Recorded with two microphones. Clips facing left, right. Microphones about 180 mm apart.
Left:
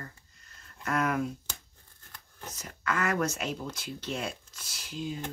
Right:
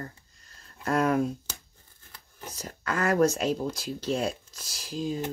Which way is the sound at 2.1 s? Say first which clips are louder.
Right 2 dB; 10° right (ahead or behind).